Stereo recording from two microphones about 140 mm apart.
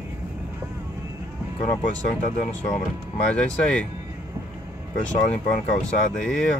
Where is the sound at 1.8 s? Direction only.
60° left (ahead or behind).